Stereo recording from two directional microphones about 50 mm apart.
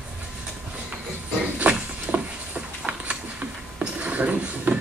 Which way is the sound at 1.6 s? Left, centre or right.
Right.